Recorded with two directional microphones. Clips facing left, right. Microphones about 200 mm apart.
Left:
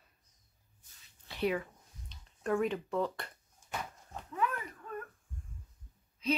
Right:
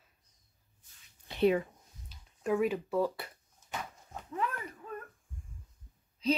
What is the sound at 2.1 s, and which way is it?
Speech, 5° right (ahead or behind).